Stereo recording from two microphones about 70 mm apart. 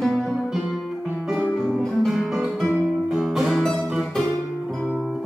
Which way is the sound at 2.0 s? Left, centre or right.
Centre.